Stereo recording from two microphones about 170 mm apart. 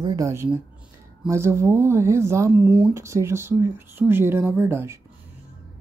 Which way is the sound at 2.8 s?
15° right (ahead or behind).